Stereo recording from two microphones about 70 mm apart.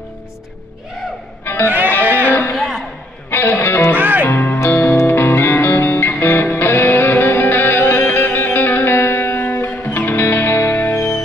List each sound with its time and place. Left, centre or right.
1.4 s music: left
2.0 s music: right
2.5 s a sound: centre
3.3 s music: left
3.9 s music: right
4.3 s music: left